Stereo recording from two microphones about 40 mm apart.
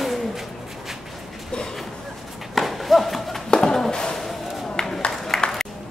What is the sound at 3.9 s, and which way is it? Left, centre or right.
Music, centre.